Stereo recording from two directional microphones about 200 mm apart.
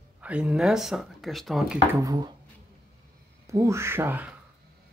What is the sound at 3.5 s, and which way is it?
Speech, 15° right (ahead or behind).